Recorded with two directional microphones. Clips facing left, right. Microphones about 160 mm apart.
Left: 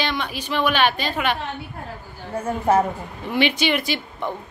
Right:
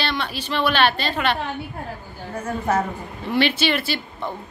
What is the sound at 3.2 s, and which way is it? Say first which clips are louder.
A woman's voice: even; 15° left (ahead or behind).